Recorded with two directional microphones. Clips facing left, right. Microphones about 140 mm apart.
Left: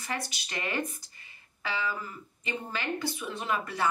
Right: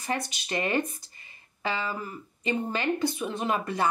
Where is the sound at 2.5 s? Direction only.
20° right (ahead or behind).